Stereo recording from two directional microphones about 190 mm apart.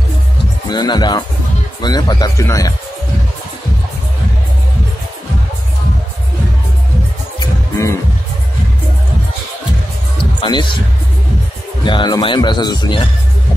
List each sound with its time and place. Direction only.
0.7 s speech: 20° left (ahead or behind)
7.3 s music: 15° left (ahead or behind)
10.1 s music: 25° left (ahead or behind)
11.8 s speech: 25° left (ahead or behind)